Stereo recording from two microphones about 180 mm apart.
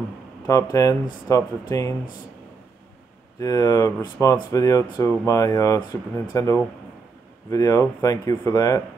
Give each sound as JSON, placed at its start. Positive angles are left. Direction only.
{"t": 0.5, "sound": "speech", "side_deg": 20}
{"t": 3.3, "sound": "speech", "side_deg": 20}